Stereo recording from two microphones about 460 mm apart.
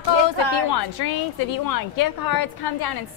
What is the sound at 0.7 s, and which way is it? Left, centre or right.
Speech, left.